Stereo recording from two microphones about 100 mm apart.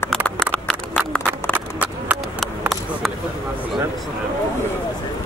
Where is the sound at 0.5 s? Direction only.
10° left (ahead or behind).